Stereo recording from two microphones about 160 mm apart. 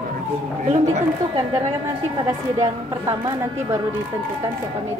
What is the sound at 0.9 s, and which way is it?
Speech, 20° right (ahead or behind).